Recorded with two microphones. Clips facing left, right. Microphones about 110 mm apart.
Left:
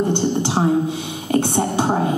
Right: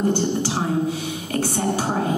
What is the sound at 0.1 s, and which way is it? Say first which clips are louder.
Speech: left 3 dB; 20° left (ahead or behind).